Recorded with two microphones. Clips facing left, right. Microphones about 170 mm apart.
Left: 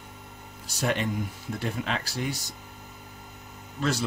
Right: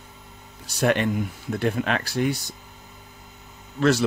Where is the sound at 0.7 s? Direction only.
65° right (ahead or behind).